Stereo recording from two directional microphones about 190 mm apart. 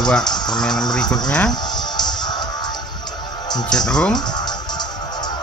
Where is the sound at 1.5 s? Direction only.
20° left (ahead or behind).